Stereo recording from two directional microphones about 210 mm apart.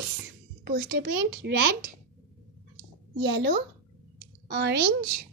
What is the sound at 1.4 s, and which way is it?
Speech, 55° right (ahead or behind).